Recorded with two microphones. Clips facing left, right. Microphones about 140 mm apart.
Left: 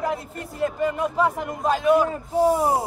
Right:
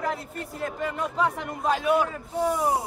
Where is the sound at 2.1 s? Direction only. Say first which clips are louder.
Left 6 dB; 30° left (ahead or behind).